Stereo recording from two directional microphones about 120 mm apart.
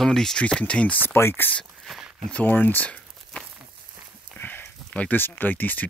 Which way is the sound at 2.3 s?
15° left (ahead or behind).